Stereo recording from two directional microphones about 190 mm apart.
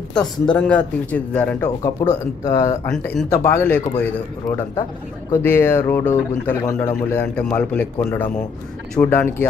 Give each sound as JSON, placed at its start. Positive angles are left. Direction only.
{"t": 0.1, "sound": "speech", "side_deg": 5}
{"t": 1.6, "sound": "speech", "side_deg": 20}
{"t": 2.9, "sound": "speech", "side_deg": 5}